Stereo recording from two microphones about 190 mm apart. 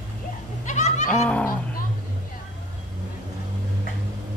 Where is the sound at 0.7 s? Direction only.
40° left (ahead or behind).